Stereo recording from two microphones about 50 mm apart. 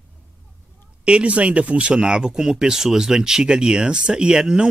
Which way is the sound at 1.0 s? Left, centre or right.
Right.